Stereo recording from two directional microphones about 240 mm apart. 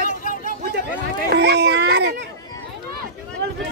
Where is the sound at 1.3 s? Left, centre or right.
Right.